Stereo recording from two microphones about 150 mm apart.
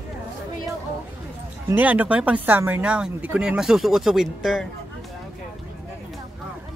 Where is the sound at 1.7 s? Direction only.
10° right (ahead or behind).